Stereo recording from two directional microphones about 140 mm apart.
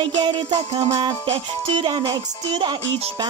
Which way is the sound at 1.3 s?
35° right (ahead or behind).